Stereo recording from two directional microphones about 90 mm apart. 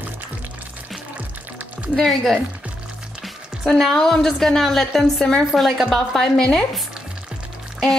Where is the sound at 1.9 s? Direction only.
5° left (ahead or behind).